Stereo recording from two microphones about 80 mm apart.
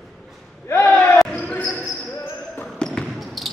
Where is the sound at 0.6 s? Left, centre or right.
Left.